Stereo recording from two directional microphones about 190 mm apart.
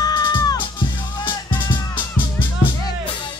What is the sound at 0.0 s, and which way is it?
Music, 20° left (ahead or behind).